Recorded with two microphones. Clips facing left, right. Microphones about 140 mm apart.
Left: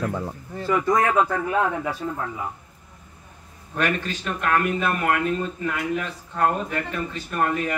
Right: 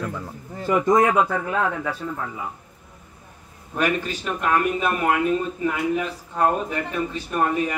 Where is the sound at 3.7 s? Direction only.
10° right (ahead or behind).